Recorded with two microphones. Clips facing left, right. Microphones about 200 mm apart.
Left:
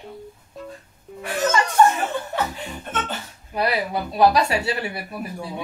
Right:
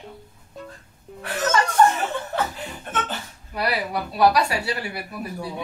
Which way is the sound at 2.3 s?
Centre (ahead or behind).